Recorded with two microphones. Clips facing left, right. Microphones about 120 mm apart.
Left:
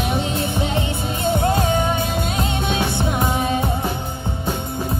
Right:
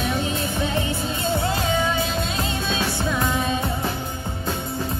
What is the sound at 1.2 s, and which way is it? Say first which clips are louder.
Music: left 5 dB; 60° left (ahead or behind).